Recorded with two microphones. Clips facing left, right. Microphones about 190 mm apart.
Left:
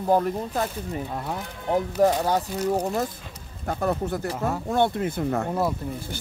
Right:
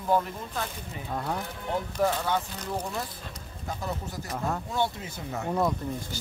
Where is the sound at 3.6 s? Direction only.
60° left (ahead or behind).